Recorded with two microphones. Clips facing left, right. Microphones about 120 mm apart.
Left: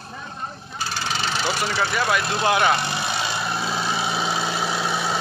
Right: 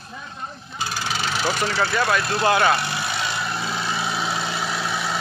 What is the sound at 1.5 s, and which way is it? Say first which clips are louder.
Speech: right 1 dB; 10° left (ahead or behind).